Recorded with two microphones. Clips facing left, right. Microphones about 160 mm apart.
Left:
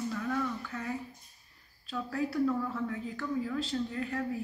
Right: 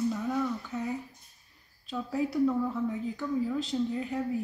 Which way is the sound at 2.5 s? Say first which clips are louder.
Right 3 dB; 15° right (ahead or behind).